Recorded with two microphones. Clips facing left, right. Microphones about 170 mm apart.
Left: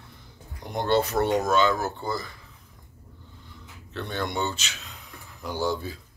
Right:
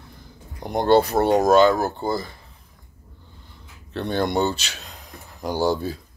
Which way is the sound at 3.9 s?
35° right (ahead or behind).